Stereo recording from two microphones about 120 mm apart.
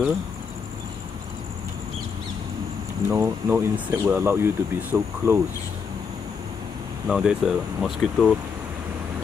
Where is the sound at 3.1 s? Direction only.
20° right (ahead or behind).